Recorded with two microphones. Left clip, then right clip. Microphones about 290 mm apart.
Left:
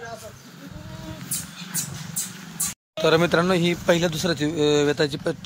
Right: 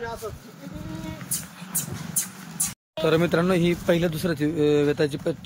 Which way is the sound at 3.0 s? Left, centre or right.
Centre.